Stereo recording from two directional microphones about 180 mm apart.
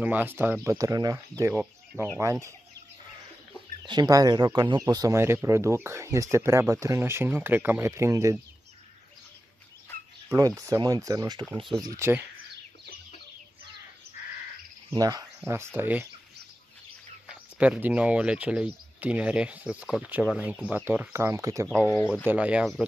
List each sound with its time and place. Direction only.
0.0 s speech: 10° right (ahead or behind)
2.2 s speech: 20° right (ahead or behind)
3.8 s speech: 25° right (ahead or behind)
10.3 s speech: 20° right (ahead or behind)
14.9 s speech: 20° right (ahead or behind)
17.3 s speech: 5° right (ahead or behind)